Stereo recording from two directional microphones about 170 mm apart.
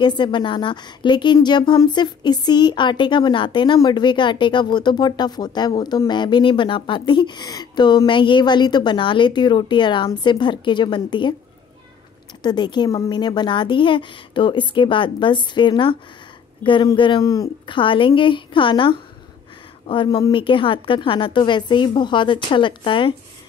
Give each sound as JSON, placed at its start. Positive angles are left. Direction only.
{"t": 0.0, "sound": "a woman's voice", "side_deg": 25}
{"t": 12.4, "sound": "a woman's voice", "side_deg": 25}